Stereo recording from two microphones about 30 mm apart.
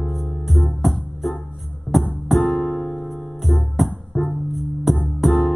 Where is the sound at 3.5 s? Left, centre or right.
Centre.